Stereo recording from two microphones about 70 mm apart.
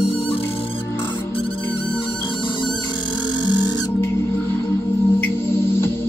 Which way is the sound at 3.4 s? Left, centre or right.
Left.